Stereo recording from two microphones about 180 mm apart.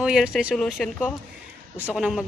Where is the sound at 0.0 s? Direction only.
5° right (ahead or behind).